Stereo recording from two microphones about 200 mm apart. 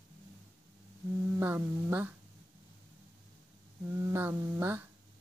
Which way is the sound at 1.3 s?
10° right (ahead or behind).